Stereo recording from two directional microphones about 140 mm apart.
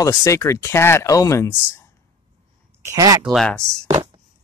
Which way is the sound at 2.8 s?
25° right (ahead or behind).